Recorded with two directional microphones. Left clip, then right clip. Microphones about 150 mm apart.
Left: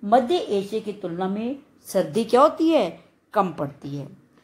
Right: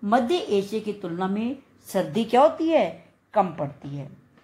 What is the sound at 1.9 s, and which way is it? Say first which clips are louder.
A woman's voice: left 3 dB; 15° left (ahead or behind).